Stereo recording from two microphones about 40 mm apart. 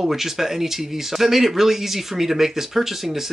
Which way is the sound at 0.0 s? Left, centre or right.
Centre.